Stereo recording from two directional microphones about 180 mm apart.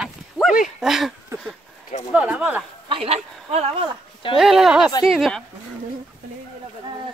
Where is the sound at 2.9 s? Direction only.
35° right (ahead or behind).